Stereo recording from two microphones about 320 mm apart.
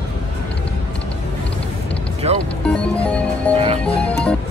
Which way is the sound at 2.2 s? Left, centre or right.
Centre.